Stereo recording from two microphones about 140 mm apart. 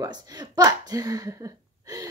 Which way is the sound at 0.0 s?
30° right (ahead or behind).